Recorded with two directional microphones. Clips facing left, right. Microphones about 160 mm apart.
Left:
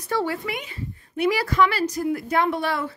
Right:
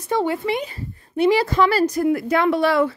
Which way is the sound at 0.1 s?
20° right (ahead or behind).